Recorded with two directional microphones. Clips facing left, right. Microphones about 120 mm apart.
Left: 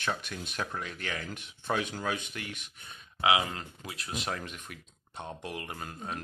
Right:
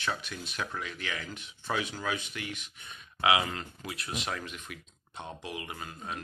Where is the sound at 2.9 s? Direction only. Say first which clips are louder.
Even; 30° left (ahead or behind).